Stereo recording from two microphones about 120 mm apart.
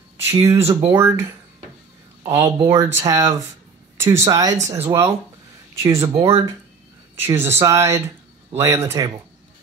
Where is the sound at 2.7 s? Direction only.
25° right (ahead or behind).